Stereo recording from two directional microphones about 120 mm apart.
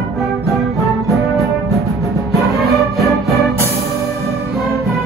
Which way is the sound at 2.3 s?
Centre (ahead or behind).